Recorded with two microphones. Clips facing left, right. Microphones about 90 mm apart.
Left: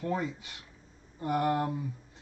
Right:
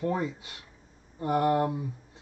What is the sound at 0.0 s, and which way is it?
Speech, 30° right (ahead or behind).